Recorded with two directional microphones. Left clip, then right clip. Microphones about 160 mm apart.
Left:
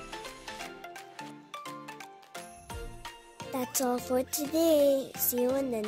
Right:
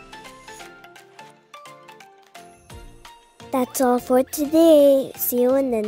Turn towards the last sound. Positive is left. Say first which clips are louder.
# right 10 dB
turn(degrees=-50)  # may be behind; listen again after turning